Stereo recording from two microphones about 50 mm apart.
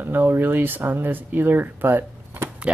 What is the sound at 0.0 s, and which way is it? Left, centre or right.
Speech, right.